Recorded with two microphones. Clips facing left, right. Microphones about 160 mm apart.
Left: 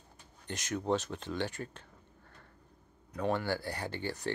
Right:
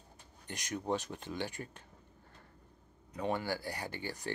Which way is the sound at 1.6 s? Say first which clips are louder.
Left 4 dB; 15° right (ahead or behind).